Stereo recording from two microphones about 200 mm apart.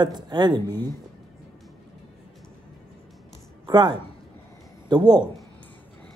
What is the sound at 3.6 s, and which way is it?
Speech, 20° right (ahead or behind).